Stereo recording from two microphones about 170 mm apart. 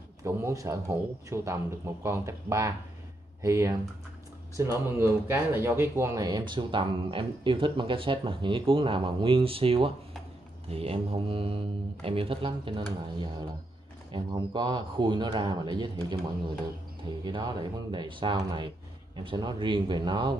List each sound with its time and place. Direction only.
0.2 s a man's voice: 20° right (ahead or behind)
17.2 s speech: 25° right (ahead or behind)